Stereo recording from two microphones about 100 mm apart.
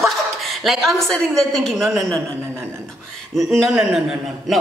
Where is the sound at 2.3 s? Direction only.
25° right (ahead or behind).